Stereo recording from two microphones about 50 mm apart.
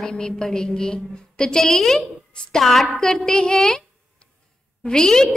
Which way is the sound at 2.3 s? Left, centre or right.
Centre.